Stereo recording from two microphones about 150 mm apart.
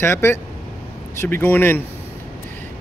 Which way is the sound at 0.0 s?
15° left (ahead or behind).